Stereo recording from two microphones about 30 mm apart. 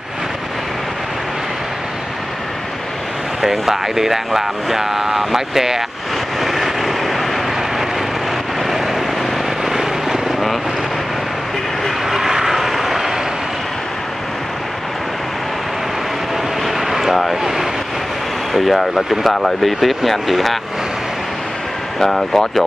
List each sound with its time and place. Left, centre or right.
3.4 s speech: centre
6.4 s vehicle: centre
8.6 s vehicle: centre
12.1 s vehicle: centre
16.6 s vehicle: centre
18.5 s speech: centre
22.0 s speech: centre